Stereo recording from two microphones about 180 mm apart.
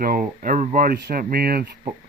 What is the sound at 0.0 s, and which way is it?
Speech, 50° right (ahead or behind).